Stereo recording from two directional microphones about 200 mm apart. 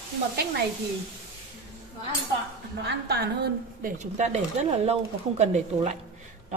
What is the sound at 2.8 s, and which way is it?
Speech, 55° right (ahead or behind).